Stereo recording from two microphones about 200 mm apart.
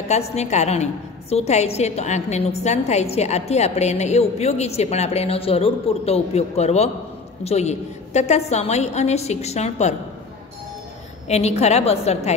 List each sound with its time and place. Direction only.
0.1 s a woman's voice: 35° left (ahead or behind)
11.2 s a woman's voice: 30° left (ahead or behind)